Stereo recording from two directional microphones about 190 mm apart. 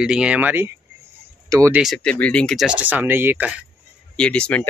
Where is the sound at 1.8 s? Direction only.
5° left (ahead or behind).